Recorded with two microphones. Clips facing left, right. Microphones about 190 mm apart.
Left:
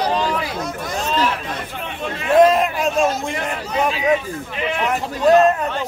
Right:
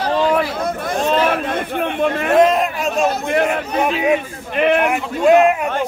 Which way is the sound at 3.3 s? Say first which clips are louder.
Right 9 dB; 65° right (ahead or behind).